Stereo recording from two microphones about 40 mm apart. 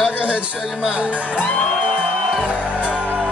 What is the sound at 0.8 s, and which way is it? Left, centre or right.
Speech, right.